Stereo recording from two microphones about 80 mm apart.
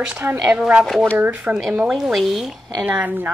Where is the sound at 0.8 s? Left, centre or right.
Centre.